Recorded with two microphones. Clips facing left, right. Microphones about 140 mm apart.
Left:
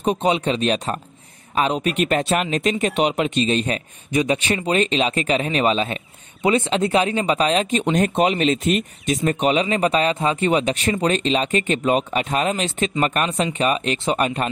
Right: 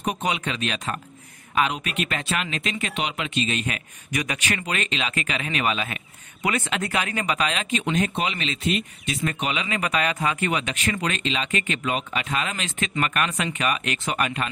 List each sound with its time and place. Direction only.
0.0 s speech: 30° left (ahead or behind)